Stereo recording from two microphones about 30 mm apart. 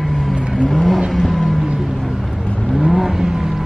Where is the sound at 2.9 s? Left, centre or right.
Centre.